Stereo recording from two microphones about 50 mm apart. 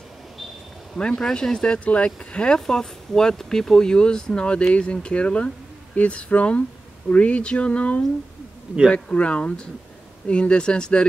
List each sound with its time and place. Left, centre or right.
1.0 s speech: centre